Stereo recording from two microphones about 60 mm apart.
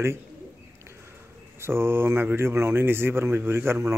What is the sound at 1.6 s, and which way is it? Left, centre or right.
Speech, right.